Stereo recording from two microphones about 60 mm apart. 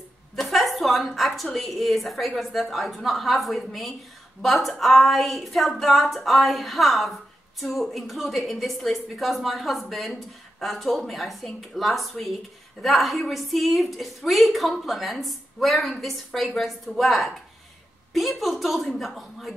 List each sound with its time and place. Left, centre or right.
0.4 s a woman's voice: centre